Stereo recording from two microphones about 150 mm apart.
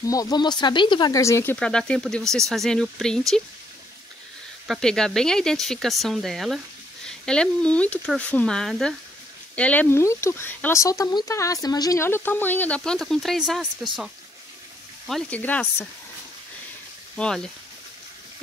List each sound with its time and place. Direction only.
0.0 s speech: 25° left (ahead or behind); by 3.4 s 5° left (ahead or behind)
4.6 s speech: 5° left (ahead or behind)
15.0 s speech: 5° left (ahead or behind)
17.2 s speech: 5° left (ahead or behind)